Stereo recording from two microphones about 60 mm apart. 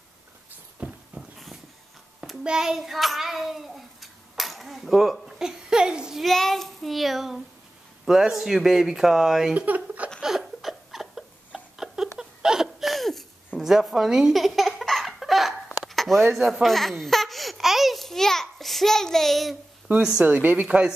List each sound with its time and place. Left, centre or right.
0.7 s a sound: centre
2.4 s child singing: centre
5.2 s speech: centre
6.2 s speech: centre
9.5 s a sound: right
10.2 s a sound: centre
12.2 s hiccup: centre
13.6 s baby laughter: centre
20.2 s speech: right